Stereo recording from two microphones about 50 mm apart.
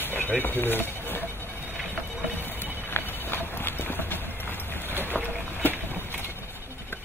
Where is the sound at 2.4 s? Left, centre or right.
Left.